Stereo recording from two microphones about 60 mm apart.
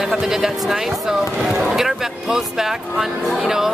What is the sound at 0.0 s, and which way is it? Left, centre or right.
Speech, centre.